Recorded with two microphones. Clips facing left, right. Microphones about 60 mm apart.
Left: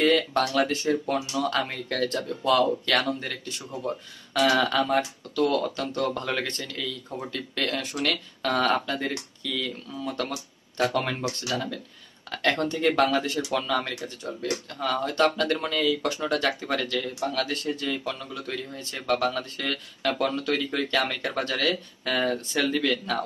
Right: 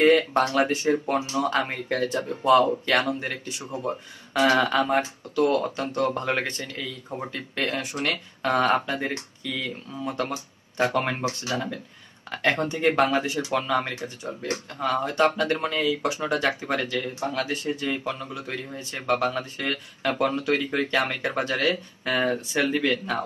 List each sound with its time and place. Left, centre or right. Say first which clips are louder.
0.6 s speech: right 2 dB; right